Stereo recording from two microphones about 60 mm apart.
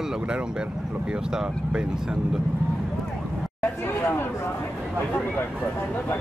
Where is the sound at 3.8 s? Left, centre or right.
Left.